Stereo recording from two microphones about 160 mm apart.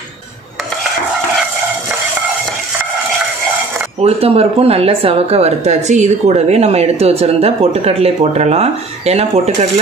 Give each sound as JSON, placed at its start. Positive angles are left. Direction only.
{"t": 4.0, "sound": "speech", "side_deg": -40}